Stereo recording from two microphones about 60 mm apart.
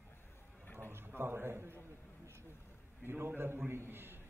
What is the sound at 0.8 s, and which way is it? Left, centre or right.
Speech, right.